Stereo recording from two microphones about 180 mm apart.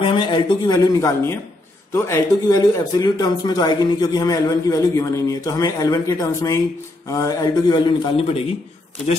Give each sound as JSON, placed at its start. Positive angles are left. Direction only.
{"t": 0.0, "sound": "speech", "side_deg": 25}